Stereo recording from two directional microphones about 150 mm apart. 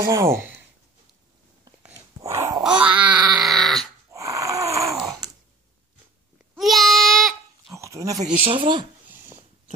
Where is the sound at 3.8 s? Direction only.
20° right (ahead or behind).